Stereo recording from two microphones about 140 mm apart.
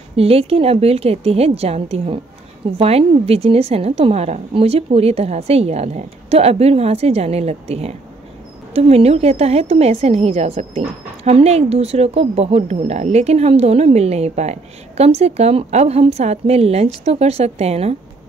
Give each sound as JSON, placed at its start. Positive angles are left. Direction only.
{"t": 0.1, "sound": "a woman's voice", "side_deg": -45}